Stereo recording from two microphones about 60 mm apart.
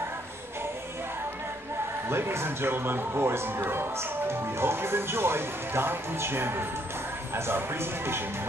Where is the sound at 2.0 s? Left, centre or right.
Right.